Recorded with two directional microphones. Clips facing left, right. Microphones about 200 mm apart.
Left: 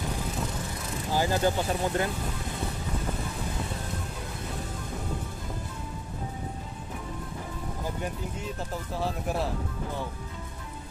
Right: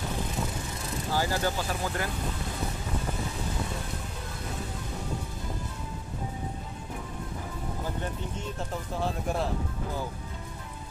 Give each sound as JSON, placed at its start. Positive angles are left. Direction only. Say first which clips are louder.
{"t": 1.1, "sound": "speech", "louder": "left 4 dB", "side_deg": 20}
{"t": 8.5, "sound": "speech", "louder": "right 1 dB", "side_deg": 0}